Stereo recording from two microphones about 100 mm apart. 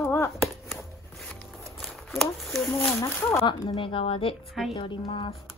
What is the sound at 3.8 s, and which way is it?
Speech, 65° left (ahead or behind).